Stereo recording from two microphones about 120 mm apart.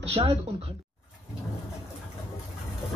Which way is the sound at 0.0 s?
55° right (ahead or behind).